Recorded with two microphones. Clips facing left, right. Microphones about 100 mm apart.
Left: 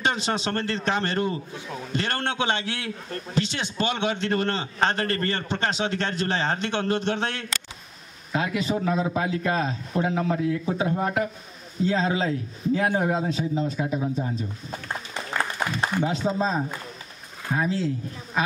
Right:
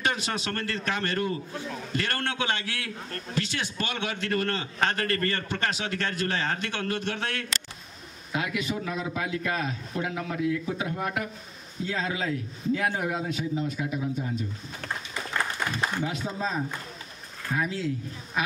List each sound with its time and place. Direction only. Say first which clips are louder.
0.0 s a man's voice: left 4 dB; 25° left (ahead or behind)
15.8 s a man's voice: left 7 dB; 30° left (ahead or behind)